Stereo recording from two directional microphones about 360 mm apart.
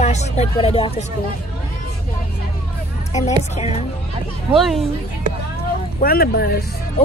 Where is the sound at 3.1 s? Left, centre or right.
Centre.